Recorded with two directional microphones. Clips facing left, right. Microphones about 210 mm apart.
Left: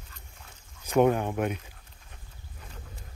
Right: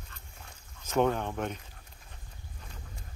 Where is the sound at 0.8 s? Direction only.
15° left (ahead or behind).